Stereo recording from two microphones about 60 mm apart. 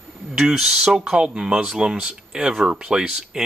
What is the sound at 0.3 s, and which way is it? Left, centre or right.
Speech, centre.